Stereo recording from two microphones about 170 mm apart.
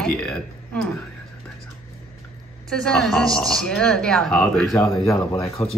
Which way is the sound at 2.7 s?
Centre (ahead or behind).